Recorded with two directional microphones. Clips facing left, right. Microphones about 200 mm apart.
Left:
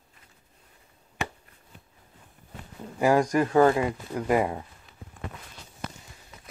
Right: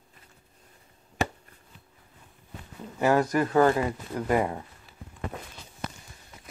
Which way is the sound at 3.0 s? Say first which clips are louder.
Left 1 dB; 10° left (ahead or behind).